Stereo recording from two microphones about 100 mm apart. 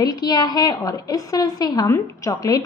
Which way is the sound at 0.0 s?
40° left (ahead or behind).